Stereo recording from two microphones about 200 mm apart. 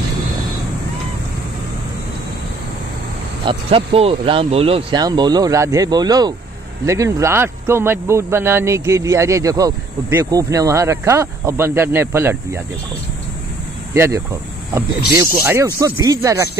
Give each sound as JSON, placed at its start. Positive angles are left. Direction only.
{"t": 3.4, "sound": "speech", "side_deg": -30}
{"t": 13.9, "sound": "speech", "side_deg": -15}